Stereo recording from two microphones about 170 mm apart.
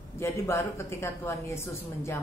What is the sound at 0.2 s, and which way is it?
A woman's voice, 15° left (ahead or behind).